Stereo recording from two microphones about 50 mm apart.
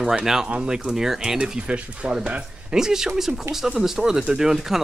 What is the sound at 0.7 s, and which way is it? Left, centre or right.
Speech, centre.